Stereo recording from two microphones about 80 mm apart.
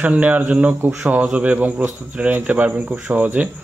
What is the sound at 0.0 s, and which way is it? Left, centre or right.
A man's voice, centre.